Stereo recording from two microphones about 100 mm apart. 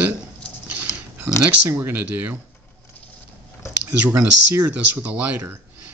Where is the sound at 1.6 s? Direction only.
20° right (ahead or behind).